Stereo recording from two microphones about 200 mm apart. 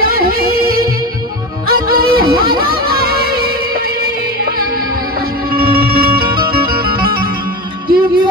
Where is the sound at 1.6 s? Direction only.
50° right (ahead or behind).